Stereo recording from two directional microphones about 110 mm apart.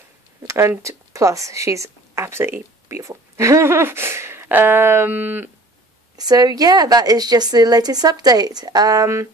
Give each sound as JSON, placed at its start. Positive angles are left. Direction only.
{"t": 0.4, "sound": "speech", "side_deg": -25}
{"t": 6.1, "sound": "a woman's voice", "side_deg": -35}